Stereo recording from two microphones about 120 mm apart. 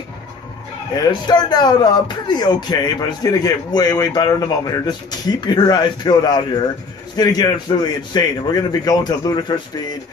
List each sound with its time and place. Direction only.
0.9 s speech: 35° left (ahead or behind)